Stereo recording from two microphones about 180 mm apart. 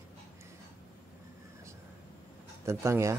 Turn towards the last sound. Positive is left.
turn(degrees=-15)  # may be behind; listen again after turning